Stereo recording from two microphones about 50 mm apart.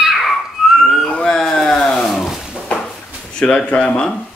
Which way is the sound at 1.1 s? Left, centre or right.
Centre.